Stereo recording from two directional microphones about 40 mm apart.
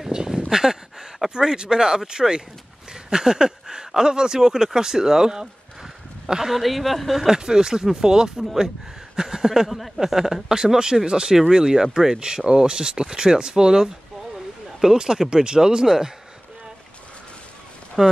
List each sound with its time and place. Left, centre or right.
0.1 s a sound: centre
0.5 s speech: centre
7.2 s speech: centre
18.0 s speech: centre